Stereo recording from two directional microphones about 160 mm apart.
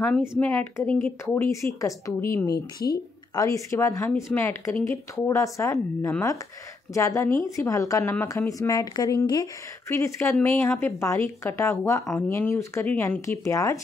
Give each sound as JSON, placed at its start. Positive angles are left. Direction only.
{"t": 0.3, "sound": "speech", "side_deg": 10}
{"t": 1.2, "sound": "speech", "side_deg": 15}